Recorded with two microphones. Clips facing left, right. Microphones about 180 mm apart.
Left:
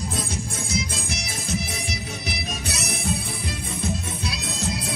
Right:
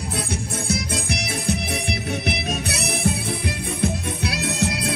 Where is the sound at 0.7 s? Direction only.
65° right (ahead or behind).